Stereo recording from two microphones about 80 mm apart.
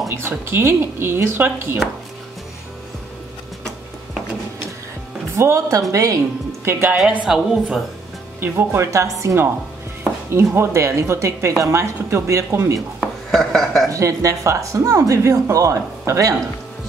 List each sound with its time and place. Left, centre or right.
0.1 s speech: right
5.3 s speech: right
6.6 s a woman's voice: right
7.2 s speech: centre
8.4 s speech: right
13.3 s speech: centre
13.8 s speech: right